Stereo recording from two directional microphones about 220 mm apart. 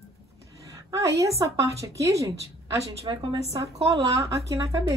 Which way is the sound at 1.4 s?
15° right (ahead or behind).